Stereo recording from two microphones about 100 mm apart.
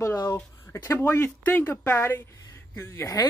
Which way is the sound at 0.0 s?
30° left (ahead or behind).